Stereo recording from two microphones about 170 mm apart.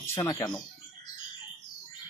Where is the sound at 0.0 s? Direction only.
20° left (ahead or behind).